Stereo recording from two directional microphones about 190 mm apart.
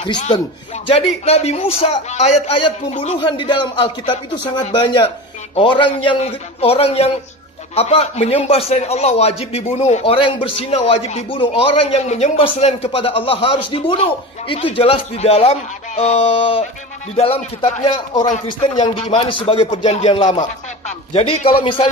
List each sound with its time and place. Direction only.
0.8 s a man's voice: 30° left (ahead or behind)
3.2 s a man's voice: 25° left (ahead or behind)